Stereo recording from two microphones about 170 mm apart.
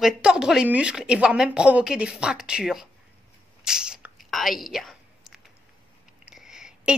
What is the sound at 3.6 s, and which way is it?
Whispering, 5° right (ahead or behind).